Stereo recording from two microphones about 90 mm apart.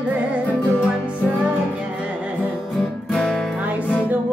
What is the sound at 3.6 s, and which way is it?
Music, 15° right (ahead or behind).